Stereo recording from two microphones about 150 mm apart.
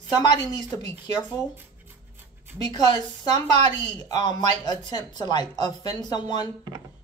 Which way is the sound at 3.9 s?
25° left (ahead or behind).